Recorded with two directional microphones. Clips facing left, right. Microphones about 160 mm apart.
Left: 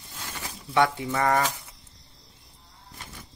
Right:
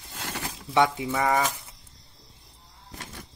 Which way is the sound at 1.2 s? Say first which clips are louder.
Left 1 dB; 5° right (ahead or behind).